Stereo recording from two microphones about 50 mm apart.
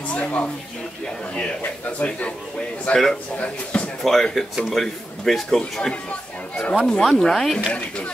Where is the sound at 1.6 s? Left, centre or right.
Left.